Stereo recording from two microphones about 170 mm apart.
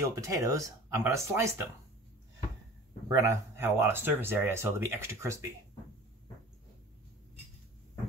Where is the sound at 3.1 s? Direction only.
15° right (ahead or behind).